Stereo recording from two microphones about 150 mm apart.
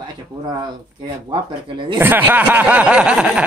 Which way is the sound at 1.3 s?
35° right (ahead or behind).